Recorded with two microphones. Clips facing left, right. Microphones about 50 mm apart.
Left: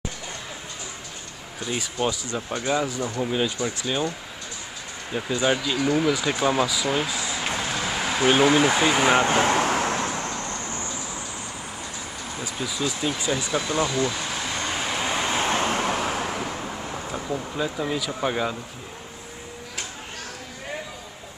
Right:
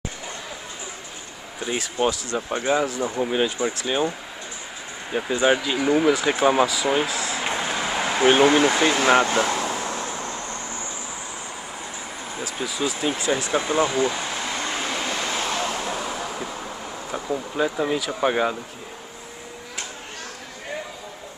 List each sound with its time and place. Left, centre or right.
1.6 s speech: right
5.1 s speech: centre
7.2 s vehicle: centre
9.2 s speech: left
9.6 s vehicle: left
12.5 s speech: centre
13.5 s a sound: centre
15.0 s vehicle: centre
15.2 s vehicle: left
17.1 s speech: centre